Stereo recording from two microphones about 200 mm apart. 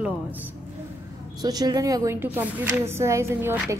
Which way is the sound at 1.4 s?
20° right (ahead or behind).